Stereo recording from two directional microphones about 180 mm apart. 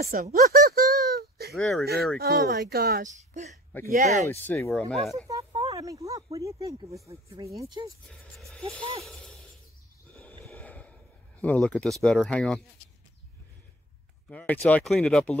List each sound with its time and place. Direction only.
0.0 s a sound: 55° right (ahead or behind)
1.5 s speech: centre (ahead or behind)
2.1 s speech: 60° right (ahead or behind)
3.0 s speech: 40° right (ahead or behind)
4.3 s speech: 15° left (ahead or behind)
4.8 s speech: centre (ahead or behind)
5.4 s a sound: 30° right (ahead or behind)
5.7 s a sound: 20° right (ahead or behind)
6.0 s speech: 20° right (ahead or behind)
10.4 s a sound: 5° left (ahead or behind)
11.4 s speech: 5° left (ahead or behind)
14.3 s speech: 10° left (ahead or behind)